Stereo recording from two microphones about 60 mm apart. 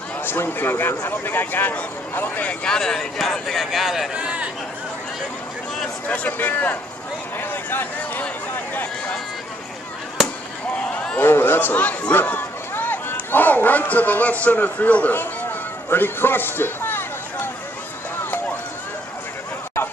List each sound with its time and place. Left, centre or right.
0.2 s speech: left
2.6 s speech: centre
4.1 s a man's voice: centre
6.0 s speech: left
7.3 s a sound: left
10.7 s a sound: left
11.1 s speech: left
15.9 s a sound: left
18.1 s music: left